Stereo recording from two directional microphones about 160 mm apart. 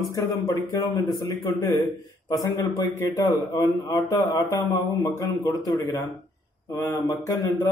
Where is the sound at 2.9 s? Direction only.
20° left (ahead or behind).